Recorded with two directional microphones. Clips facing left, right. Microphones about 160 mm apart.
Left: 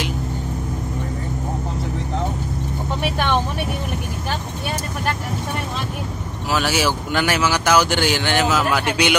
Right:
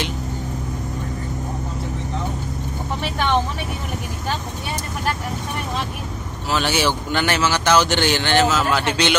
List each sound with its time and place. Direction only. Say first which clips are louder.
6.5 s speech: even; 5° left (ahead or behind)